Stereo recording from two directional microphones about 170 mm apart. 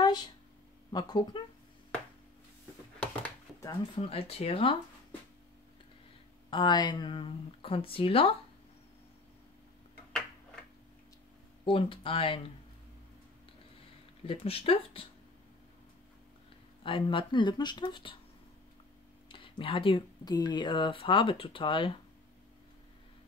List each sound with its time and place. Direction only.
0.0 s a sound: 25° left (ahead or behind)
0.9 s speech: 25° left (ahead or behind)
3.6 s speech: 30° left (ahead or behind)
6.5 s speech: 25° left (ahead or behind)
11.6 s speech: 30° left (ahead or behind)
14.2 s speech: 35° left (ahead or behind)
16.8 s speech: 30° left (ahead or behind)
19.2 s speech: 30° left (ahead or behind)